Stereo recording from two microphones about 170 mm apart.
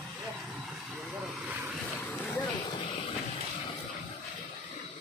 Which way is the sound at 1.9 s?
10° left (ahead or behind).